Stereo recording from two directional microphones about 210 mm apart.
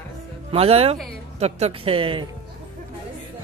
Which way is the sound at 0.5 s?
30° right (ahead or behind).